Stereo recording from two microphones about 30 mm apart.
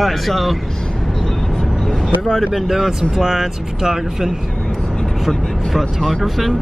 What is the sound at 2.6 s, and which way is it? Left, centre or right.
Speech, centre.